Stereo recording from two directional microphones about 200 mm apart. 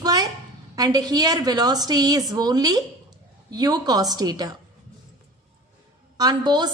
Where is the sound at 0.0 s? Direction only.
20° right (ahead or behind).